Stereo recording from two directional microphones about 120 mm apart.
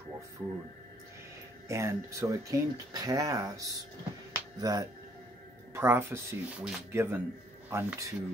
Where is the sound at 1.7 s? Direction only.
25° right (ahead or behind).